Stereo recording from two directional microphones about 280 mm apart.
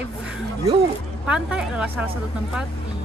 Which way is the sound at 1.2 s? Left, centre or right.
Centre.